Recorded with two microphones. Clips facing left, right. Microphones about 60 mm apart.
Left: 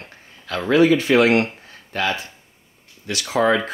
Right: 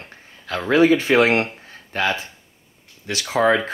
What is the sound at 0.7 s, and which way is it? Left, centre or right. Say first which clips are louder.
Speech: even; right.